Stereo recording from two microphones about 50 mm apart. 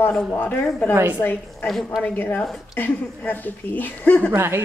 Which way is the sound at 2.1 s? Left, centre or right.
Left.